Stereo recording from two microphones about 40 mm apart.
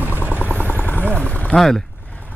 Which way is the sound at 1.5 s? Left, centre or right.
Centre.